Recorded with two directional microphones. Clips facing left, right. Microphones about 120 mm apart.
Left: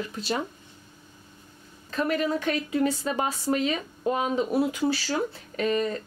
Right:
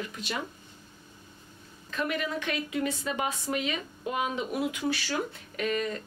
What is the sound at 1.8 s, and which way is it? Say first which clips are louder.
A woman's voice: left 5 dB; 40° left (ahead or behind).